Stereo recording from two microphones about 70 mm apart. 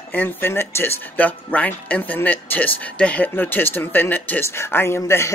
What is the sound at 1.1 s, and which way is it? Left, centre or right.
Speech, left.